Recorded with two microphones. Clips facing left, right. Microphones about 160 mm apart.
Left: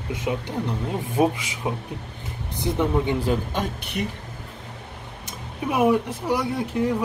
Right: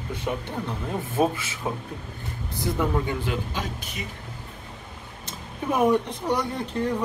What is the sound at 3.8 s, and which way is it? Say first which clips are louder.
Speech: left 8 dB; 65° left (ahead or behind).